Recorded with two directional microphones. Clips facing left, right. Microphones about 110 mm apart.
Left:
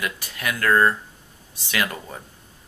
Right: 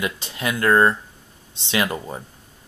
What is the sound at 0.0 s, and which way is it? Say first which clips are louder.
Speech: right 3 dB; 25° right (ahead or behind).